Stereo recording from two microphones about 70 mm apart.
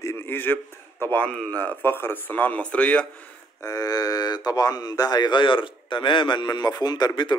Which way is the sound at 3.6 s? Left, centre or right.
Left.